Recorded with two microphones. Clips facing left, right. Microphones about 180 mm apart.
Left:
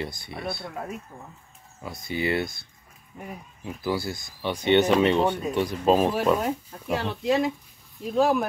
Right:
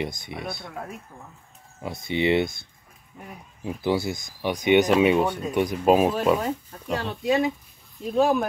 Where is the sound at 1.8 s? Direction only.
25° right (ahead or behind).